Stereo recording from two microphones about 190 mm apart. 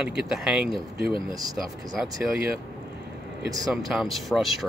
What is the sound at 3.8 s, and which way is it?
Speech, centre (ahead or behind).